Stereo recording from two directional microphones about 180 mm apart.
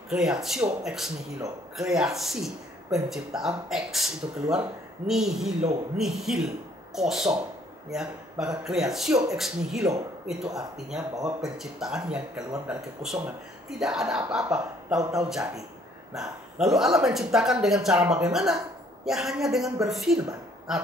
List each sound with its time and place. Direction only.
0.1 s speech: centre (ahead or behind)
15.0 s speech: 20° right (ahead or behind)
15.2 s speech: centre (ahead or behind)